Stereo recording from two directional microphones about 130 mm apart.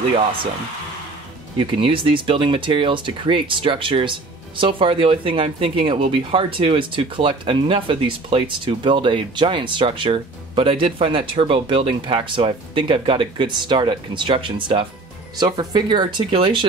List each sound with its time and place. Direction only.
1.6 s speech: 40° right (ahead or behind)